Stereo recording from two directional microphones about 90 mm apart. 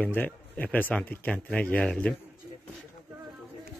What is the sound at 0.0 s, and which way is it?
Speech, 20° left (ahead or behind).